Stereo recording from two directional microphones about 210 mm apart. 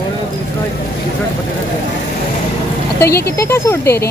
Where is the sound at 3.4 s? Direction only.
10° left (ahead or behind).